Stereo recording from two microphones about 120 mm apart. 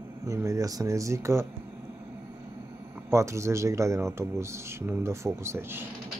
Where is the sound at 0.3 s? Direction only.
25° right (ahead or behind).